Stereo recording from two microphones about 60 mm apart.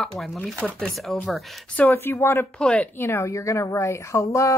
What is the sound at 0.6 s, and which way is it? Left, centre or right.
Speech, centre.